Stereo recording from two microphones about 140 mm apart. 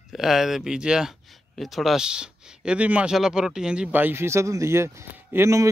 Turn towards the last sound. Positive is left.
turn(degrees=-20)  # may be behind; listen again after turning